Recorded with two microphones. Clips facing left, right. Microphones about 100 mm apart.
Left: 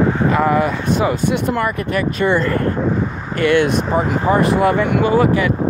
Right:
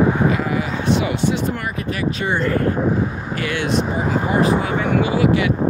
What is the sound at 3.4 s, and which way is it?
Speech, 55° left (ahead or behind).